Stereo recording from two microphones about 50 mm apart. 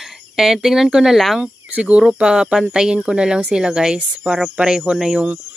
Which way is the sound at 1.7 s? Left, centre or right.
Right.